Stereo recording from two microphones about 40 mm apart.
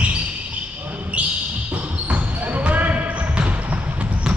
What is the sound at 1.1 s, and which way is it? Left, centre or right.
Basketball bounce, right.